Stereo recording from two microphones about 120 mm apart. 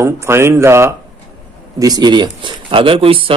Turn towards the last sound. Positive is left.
turn(degrees=-50)  # may be behind; listen again after turning